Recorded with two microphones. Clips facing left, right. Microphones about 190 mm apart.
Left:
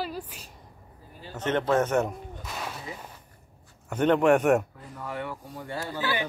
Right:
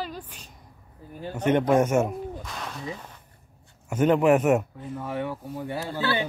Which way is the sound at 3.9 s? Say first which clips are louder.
Right 1 dB; 5° right (ahead or behind).